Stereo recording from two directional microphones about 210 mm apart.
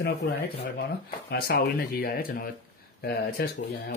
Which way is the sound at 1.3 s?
45° left (ahead or behind).